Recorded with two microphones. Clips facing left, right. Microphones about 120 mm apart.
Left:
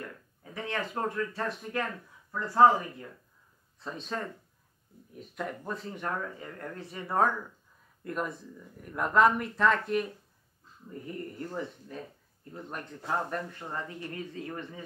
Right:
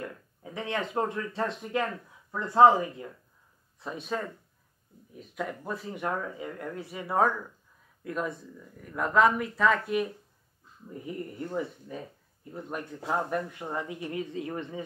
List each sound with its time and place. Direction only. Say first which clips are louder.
0.4 s speech: right 2 dB; 20° right (ahead or behind)
8.0 s speech: right 1 dB; centre (ahead or behind); by 14.8 s 20° right (ahead or behind)